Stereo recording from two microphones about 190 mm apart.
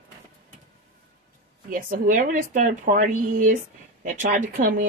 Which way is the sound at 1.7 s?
45° right (ahead or behind).